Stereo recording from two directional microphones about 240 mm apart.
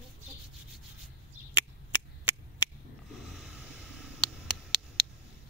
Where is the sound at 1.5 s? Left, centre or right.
Left.